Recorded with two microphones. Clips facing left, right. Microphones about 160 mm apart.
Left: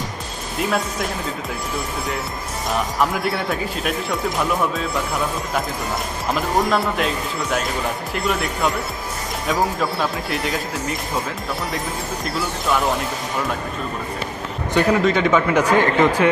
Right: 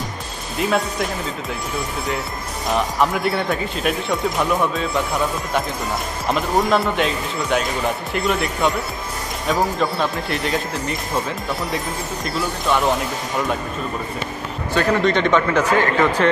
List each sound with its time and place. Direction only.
0.6 s speech: centre (ahead or behind)
3.0 s speech: centre (ahead or behind)
6.3 s speech: centre (ahead or behind)
12.3 s speech: centre (ahead or behind)
14.7 s speech: 15° left (ahead or behind)
15.0 s a man's voice: 5° left (ahead or behind)